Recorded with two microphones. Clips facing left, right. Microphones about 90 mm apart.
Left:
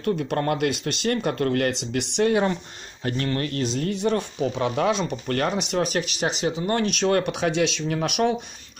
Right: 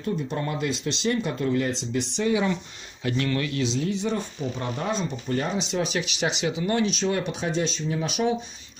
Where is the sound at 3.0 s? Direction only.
40° left (ahead or behind).